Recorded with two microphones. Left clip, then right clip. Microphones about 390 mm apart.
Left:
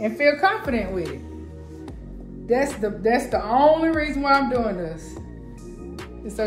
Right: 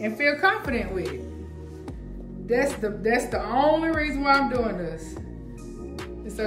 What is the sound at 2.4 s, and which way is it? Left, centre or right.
A woman's voice, centre.